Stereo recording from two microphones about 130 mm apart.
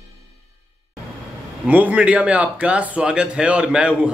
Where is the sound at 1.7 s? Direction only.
10° right (ahead or behind).